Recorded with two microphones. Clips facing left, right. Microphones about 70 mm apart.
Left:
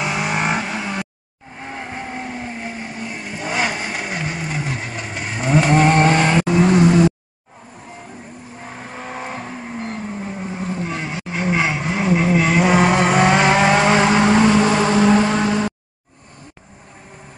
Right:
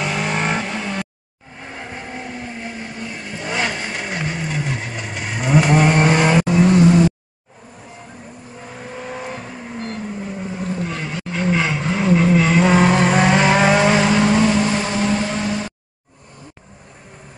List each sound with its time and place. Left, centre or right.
0.0 s vehicle: centre
1.7 s vehicle: left; by 6.4 s centre
9.1 s vehicle: left; by 13.8 s centre
13.8 s vehicle: left
14.6 s vehicle: left